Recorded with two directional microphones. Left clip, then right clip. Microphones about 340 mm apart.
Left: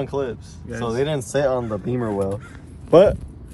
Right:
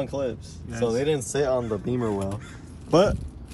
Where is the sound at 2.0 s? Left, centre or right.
Left.